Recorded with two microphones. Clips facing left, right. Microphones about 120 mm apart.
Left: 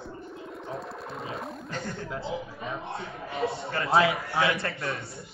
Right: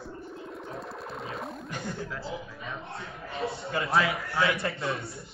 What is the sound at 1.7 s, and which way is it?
Speech, 10° right (ahead or behind).